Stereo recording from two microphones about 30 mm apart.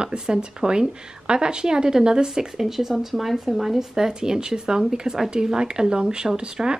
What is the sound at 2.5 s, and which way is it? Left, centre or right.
Speech, centre.